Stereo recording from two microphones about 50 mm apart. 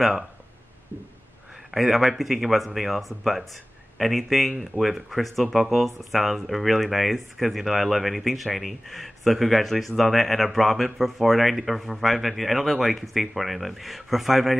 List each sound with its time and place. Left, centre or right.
1.7 s speech: centre